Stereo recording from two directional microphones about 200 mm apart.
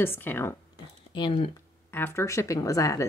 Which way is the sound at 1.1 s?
25° left (ahead or behind).